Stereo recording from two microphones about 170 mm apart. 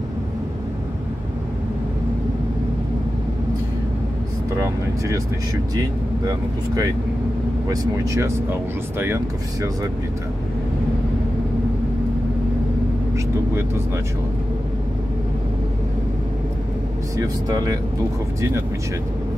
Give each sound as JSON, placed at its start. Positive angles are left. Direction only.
{"t": 4.6, "sound": "speech", "side_deg": -20}
{"t": 17.2, "sound": "speech", "side_deg": -20}